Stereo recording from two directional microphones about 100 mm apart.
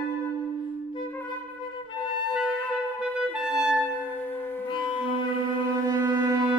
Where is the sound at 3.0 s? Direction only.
10° right (ahead or behind).